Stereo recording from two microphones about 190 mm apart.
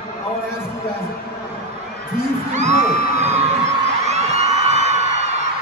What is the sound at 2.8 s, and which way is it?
Music, 35° right (ahead or behind).